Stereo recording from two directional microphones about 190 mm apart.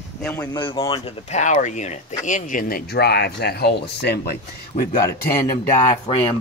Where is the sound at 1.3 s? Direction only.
40° left (ahead or behind); by 4.3 s 60° left (ahead or behind).